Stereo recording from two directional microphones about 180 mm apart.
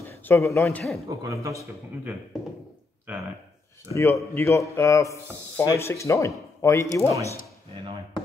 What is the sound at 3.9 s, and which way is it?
Speech, 15° left (ahead or behind).